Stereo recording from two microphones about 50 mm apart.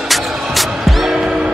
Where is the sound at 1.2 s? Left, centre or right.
Centre.